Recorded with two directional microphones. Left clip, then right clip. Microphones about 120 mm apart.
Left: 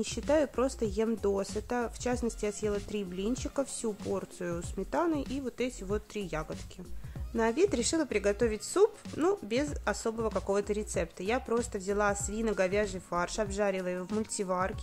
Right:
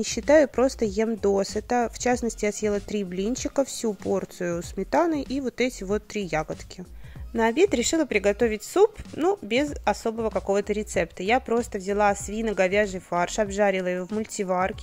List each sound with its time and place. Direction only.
0.0 s speech: 40° right (ahead or behind)